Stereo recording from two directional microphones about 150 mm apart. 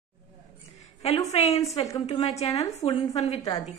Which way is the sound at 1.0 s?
45° left (ahead or behind).